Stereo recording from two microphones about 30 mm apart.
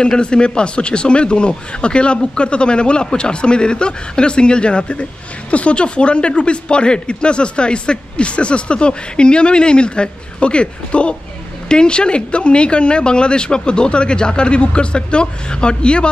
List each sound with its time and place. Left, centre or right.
0.2 s speech: left